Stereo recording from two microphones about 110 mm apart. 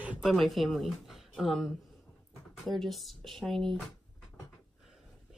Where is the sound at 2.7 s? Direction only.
Centre (ahead or behind).